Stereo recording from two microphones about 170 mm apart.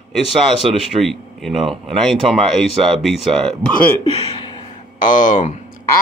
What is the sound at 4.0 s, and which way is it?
Speech, 30° left (ahead or behind).